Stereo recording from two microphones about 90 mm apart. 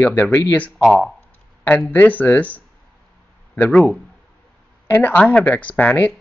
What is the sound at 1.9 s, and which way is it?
Speech, 20° left (ahead or behind).